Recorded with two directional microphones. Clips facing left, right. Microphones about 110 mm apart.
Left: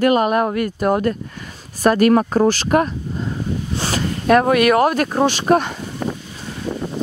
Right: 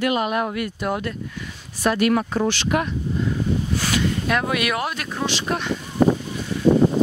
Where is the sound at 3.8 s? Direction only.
35° left (ahead or behind).